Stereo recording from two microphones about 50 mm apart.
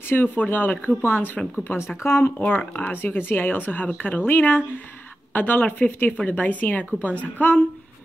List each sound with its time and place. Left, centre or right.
0.1 s speech: left
2.0 s speech: left
2.5 s speech: left